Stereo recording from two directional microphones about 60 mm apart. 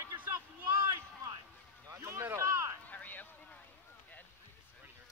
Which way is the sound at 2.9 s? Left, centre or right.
Left.